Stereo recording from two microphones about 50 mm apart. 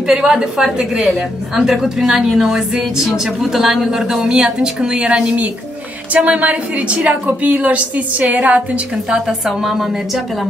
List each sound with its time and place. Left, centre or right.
0.0 s a woman's voice: centre
9.6 s speech: centre